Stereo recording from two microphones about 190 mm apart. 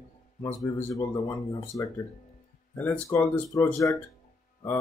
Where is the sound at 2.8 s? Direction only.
10° left (ahead or behind).